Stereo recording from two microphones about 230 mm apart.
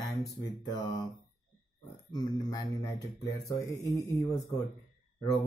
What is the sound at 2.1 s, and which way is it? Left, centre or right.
Speech, centre.